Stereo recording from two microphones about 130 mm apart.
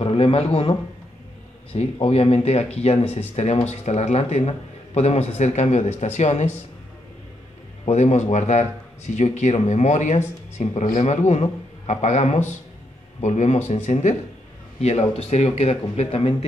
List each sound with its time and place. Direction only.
0.0 s speech: 50° left (ahead or behind)
7.8 s speech: 60° left (ahead or behind)